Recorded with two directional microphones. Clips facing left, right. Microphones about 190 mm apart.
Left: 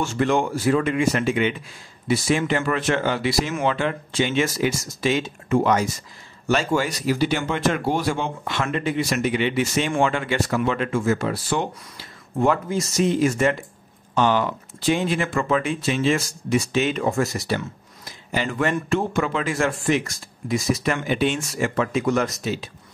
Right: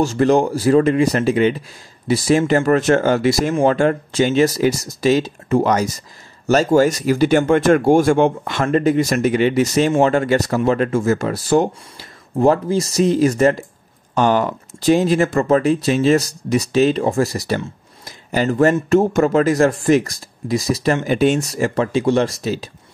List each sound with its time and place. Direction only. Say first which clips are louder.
0.0 s speech: right 6 dB; 40° right (ahead or behind)